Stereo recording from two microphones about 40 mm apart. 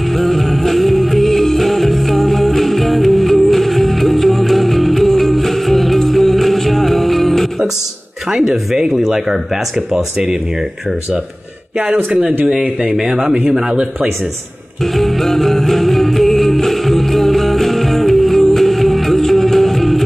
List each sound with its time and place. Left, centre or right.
0.1 s music: centre
8.3 s speech: centre
13.0 s speech: centre
14.8 s music: centre